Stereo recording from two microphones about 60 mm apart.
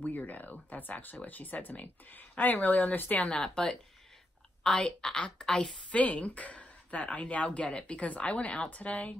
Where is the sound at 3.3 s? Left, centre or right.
Centre.